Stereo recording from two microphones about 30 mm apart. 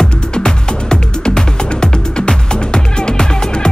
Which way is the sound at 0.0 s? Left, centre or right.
Left.